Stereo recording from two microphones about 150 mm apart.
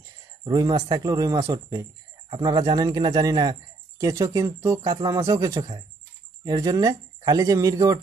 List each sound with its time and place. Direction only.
0.4 s speech: 25° right (ahead or behind)